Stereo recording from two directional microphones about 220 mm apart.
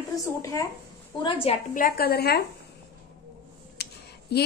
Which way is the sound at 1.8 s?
40° left (ahead or behind).